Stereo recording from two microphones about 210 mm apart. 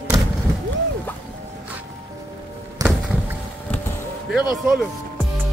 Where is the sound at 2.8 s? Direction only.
15° right (ahead or behind).